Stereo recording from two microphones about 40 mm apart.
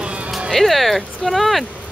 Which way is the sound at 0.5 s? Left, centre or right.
Centre.